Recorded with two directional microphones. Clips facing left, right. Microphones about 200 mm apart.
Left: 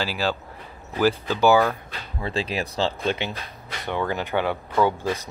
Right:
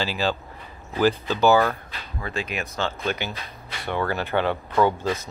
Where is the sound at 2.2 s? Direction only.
30° left (ahead or behind).